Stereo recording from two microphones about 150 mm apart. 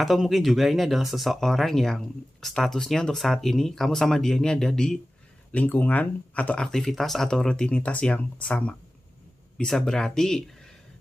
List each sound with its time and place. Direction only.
0.0 s speech: centre (ahead or behind)